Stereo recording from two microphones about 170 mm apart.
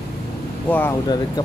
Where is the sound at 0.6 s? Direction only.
10° left (ahead or behind).